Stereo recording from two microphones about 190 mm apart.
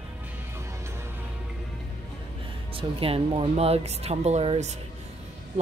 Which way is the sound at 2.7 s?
30° right (ahead or behind).